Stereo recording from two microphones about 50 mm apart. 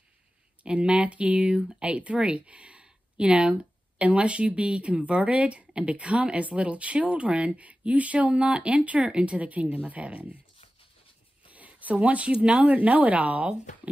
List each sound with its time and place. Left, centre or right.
0.7 s speech: right
11.4 s speech: right